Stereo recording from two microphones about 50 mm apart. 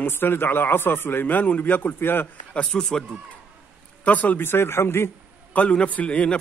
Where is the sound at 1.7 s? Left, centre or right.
Left.